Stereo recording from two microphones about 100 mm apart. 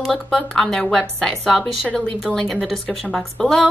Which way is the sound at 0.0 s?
Centre (ahead or behind).